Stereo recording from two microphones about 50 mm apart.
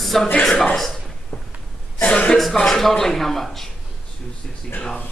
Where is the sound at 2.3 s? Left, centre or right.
Centre.